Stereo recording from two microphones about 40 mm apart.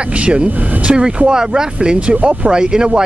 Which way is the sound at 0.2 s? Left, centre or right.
Right.